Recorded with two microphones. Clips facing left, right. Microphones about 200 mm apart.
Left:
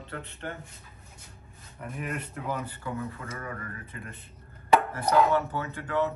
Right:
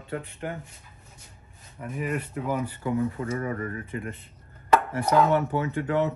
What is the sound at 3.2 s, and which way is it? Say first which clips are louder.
Speech: right 9 dB; 30° right (ahead or behind).